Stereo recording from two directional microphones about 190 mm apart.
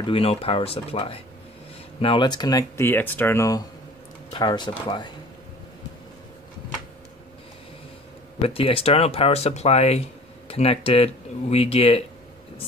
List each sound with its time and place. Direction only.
0.0 s speech: 30° left (ahead or behind)
8.4 s speech: 30° left (ahead or behind)